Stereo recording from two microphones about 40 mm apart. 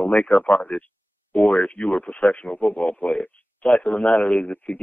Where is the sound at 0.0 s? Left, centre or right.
Left.